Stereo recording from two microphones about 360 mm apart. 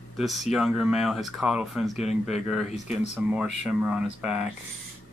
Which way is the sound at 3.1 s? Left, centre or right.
Centre.